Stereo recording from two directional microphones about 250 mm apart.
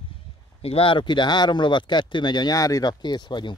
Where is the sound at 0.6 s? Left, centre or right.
Left.